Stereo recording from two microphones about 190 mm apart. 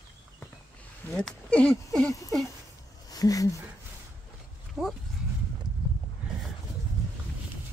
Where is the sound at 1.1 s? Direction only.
5° left (ahead or behind).